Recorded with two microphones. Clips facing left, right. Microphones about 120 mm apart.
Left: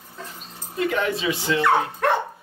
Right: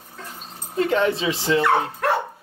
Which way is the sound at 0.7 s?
30° right (ahead or behind).